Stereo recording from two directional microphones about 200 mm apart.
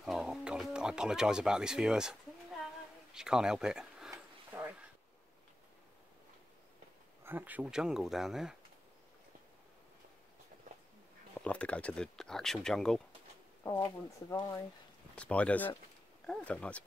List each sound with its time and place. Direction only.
0.0 s a sound: 5° right (ahead or behind)
7.2 s speech: 10° right (ahead or behind)
11.3 s speech: 5° left (ahead or behind)
13.8 s speech: 20° left (ahead or behind)
15.1 s speech: 5° left (ahead or behind)